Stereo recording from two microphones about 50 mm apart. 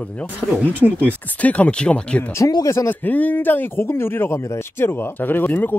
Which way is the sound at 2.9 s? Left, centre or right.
Left.